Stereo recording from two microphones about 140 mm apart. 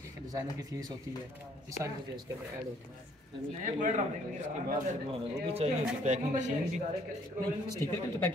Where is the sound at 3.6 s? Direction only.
70° right (ahead or behind).